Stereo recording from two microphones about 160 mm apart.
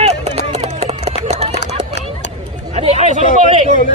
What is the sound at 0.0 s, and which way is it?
Run, 40° right (ahead or behind).